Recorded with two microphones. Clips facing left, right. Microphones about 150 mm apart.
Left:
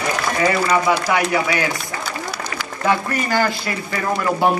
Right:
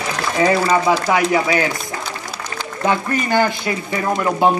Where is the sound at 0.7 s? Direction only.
20° right (ahead or behind).